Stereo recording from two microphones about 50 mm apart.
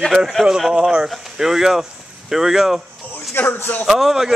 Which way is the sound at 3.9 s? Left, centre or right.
Centre.